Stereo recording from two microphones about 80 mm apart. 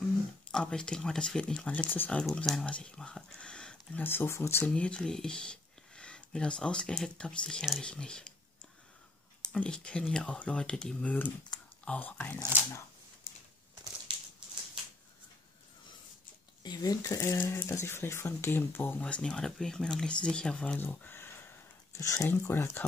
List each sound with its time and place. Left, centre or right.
0.0 s speech: centre
2.7 s a sound: centre
4.0 s speech: left
4.7 s speech: centre
9.5 s speech: centre
14.1 s a sound: right
16.6 s speech: left
18.9 s speech: centre
21.9 s speech: left